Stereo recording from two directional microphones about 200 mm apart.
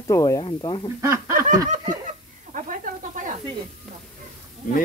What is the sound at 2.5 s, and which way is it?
Snake, 40° right (ahead or behind).